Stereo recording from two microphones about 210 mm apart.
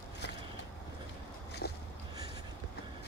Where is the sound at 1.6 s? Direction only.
50° left (ahead or behind).